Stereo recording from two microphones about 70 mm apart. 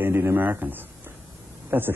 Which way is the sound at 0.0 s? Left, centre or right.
Right.